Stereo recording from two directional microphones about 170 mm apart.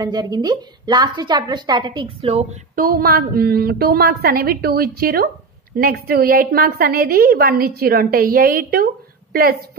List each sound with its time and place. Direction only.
0.0 s a woman's voice: 25° right (ahead or behind)
2.7 s a woman's voice: 60° right (ahead or behind)